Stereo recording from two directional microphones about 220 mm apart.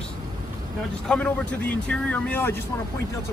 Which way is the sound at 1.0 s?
5° left (ahead or behind).